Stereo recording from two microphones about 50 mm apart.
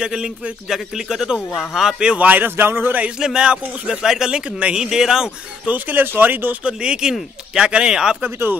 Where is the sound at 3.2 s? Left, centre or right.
Centre.